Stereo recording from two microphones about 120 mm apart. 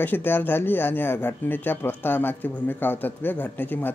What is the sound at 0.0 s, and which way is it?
Speech, 15° left (ahead or behind).